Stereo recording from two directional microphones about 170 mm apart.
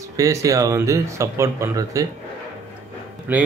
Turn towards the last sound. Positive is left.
turn(degrees=-10)  # may be behind; listen again after turning